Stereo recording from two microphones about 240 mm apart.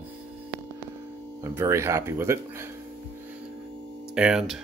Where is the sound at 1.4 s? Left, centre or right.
Centre.